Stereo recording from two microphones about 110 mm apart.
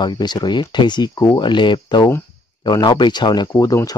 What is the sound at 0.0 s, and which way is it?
Speech, 40° left (ahead or behind).